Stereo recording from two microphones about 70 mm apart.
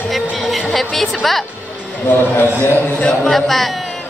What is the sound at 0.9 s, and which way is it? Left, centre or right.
Speech, centre.